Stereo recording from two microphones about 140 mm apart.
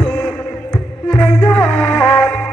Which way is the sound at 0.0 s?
5° left (ahead or behind).